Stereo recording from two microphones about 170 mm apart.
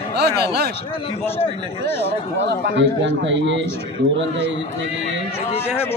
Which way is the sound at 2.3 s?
90° right.